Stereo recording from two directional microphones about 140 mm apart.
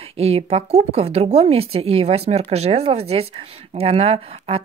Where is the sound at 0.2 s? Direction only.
45° right (ahead or behind).